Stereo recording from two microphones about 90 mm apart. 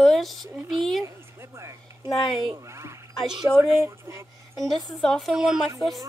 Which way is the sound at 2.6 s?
30° right (ahead or behind).